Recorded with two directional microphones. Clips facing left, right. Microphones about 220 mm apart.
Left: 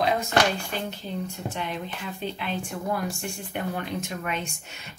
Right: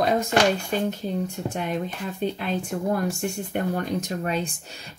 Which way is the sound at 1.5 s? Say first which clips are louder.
Right 5 dB; 45° right (ahead or behind).